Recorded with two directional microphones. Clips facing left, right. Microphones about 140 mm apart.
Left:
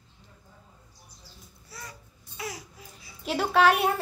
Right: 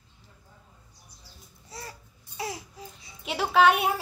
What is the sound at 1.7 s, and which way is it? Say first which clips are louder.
Babbling: right 3 dB; 30° right (ahead or behind).